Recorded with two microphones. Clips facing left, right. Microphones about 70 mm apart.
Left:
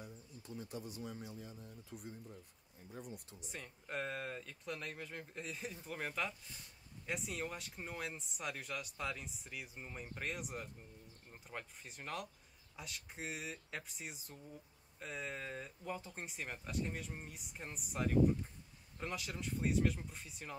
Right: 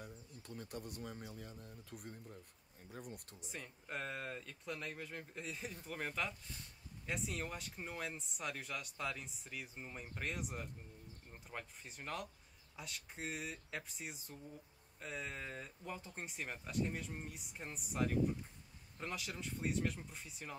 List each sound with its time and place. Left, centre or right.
0.0 s speech: right
3.3 s speech: centre